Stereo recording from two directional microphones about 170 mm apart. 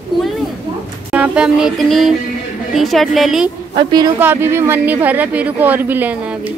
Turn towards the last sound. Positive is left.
turn(degrees=-10)  # may be behind; listen again after turning